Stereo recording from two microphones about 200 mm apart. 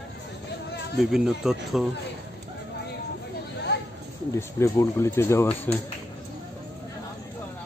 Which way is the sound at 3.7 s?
60° left (ahead or behind).